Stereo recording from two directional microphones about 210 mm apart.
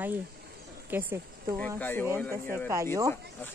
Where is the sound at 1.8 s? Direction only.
10° left (ahead or behind).